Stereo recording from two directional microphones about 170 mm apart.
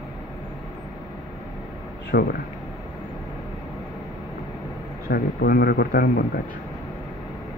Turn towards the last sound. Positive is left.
turn(degrees=65)  # may be behind; listen again after turning